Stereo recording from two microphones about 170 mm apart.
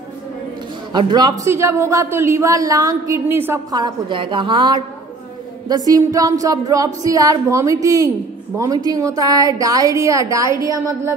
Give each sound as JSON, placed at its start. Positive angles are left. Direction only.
{"t": 0.9, "sound": "a man's voice", "side_deg": -25}